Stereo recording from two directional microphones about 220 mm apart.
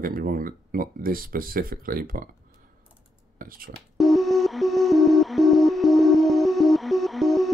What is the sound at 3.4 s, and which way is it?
Speech, 40° right (ahead or behind).